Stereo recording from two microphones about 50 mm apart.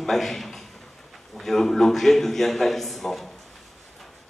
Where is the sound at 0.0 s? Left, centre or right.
Centre.